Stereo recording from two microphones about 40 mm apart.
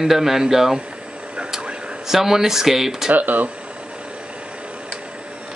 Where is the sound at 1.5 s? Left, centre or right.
Right.